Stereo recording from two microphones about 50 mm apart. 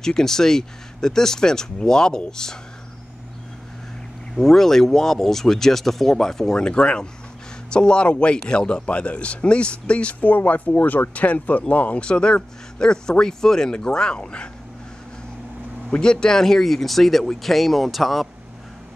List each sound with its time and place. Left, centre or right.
0.0 s speech: centre
4.4 s a man's voice: centre; by 12.0 s left
12.0 s speech: centre
16.0 s speech: centre